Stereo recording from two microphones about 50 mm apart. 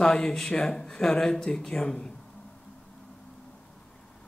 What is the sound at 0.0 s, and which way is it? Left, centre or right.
Speech, centre.